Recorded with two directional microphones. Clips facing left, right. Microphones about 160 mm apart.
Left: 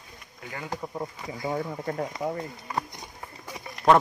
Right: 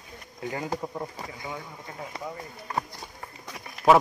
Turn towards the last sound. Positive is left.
turn(degrees=-5)  # may be behind; listen again after turning